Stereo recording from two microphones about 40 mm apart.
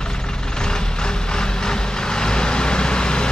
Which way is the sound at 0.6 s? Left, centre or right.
Centre.